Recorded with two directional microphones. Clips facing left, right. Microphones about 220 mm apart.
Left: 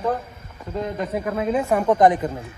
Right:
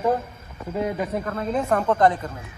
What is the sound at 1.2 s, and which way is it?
Speech, 10° left (ahead or behind).